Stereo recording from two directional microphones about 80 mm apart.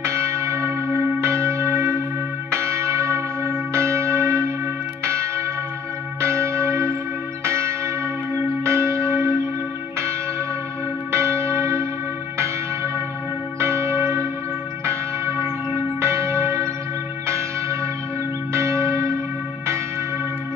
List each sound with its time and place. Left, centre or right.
0.0 s church bell: right
11.1 s church bell: right
13.6 s church bell: right
18.5 s church bell: right